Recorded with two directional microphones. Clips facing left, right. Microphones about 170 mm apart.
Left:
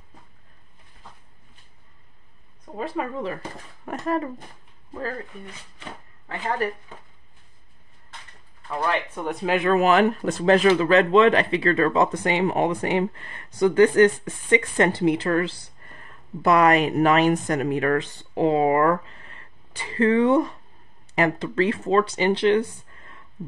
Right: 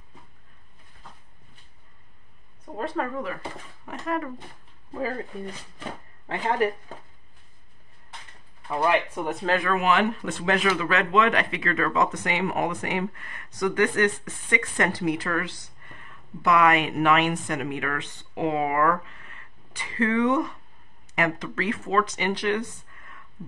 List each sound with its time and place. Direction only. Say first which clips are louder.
2.6 s speech: even; centre (ahead or behind)
3.8 s speech: left 4 dB; 40° left (ahead or behind)
6.2 s speech: right 2 dB; 15° right (ahead or behind)
8.6 s speech: right 2 dB; 15° right (ahead or behind)
9.7 s speech: left 7 dB; 40° left (ahead or behind)